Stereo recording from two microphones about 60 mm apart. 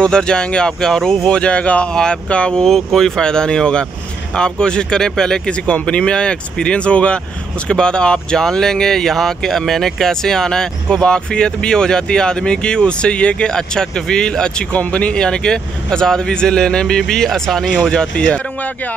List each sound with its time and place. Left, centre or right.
0.0 s speech: centre